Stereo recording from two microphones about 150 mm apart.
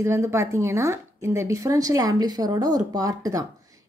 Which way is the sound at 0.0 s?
15° right (ahead or behind).